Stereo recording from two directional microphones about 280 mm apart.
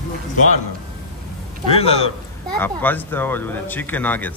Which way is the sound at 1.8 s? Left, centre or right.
Left.